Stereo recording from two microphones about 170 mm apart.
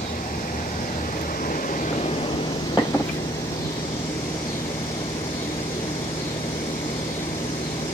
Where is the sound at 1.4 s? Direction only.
50° left (ahead or behind).